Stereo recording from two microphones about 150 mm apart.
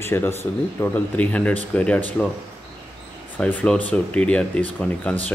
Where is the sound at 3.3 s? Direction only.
10° left (ahead or behind).